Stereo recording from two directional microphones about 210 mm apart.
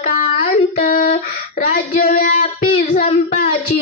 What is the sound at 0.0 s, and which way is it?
Child singing, 40° left (ahead or behind).